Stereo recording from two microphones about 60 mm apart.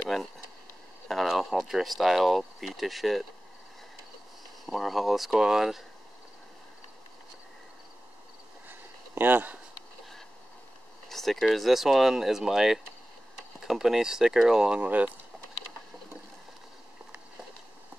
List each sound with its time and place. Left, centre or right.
1.0 s speech: centre
4.6 s speech: centre
8.6 s a sound: right
11.1 s speech: centre